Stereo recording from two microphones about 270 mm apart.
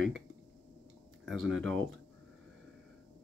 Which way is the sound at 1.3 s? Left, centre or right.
Right.